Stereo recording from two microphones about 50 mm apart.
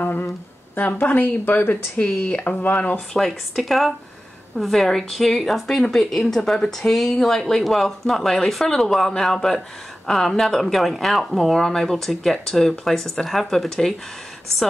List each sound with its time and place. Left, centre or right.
0.0 s a sound: left
0.7 s speech: left
2.0 s speech: centre
2.3 s speech: left
3.1 s speech: centre